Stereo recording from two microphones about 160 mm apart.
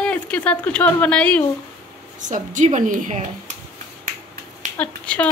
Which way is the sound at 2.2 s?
50° right (ahead or behind).